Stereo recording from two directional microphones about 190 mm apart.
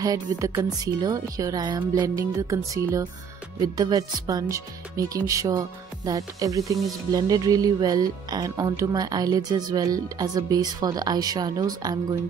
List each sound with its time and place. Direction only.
0.0 s speech: 20° right (ahead or behind)